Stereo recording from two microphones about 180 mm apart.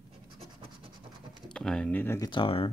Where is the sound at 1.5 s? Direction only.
5° left (ahead or behind).